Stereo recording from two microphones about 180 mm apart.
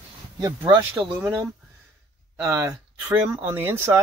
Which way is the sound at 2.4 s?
15° right (ahead or behind).